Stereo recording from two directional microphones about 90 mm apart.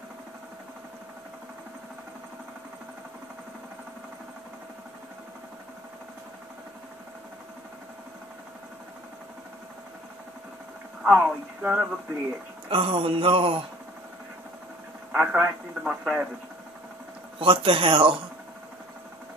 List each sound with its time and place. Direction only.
11.1 s speech: 15° right (ahead or behind)
12.6 s speech: 80° right
15.1 s speech: 15° right (ahead or behind)
17.4 s speech: 75° right (ahead or behind)